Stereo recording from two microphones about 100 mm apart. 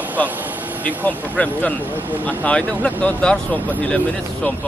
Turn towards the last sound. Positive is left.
turn(degrees=15)  # may be behind; listen again after turning